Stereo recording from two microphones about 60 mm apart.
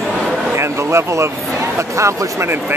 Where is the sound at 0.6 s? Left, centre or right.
Right.